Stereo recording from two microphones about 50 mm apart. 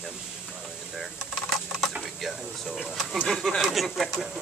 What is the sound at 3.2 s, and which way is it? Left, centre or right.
Speech, centre.